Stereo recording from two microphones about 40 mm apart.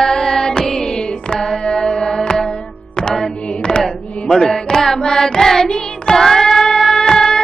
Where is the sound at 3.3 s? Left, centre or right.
Left.